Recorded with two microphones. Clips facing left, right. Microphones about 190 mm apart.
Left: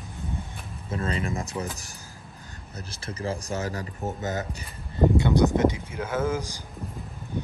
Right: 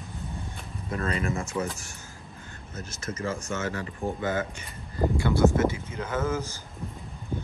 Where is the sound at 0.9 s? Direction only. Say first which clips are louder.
Even; 30° left (ahead or behind).